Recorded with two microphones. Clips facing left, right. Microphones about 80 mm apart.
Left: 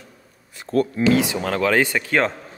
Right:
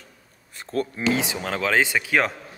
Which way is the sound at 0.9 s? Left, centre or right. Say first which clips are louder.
Left 5 dB; right.